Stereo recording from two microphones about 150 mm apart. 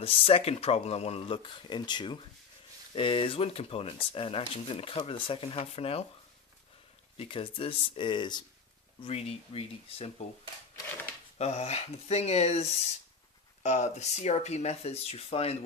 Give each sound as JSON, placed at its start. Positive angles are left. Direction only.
{"t": 0.0, "sound": "speech", "side_deg": 40}
{"t": 7.2, "sound": "speech", "side_deg": 35}
{"t": 9.0, "sound": "speech", "side_deg": 40}
{"t": 11.3, "sound": "speech", "side_deg": 45}